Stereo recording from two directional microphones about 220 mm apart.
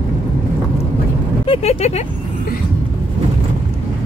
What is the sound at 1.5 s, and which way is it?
Speech, 30° left (ahead or behind).